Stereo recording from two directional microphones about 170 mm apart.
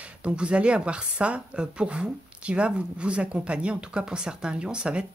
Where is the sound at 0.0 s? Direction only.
5° right (ahead or behind).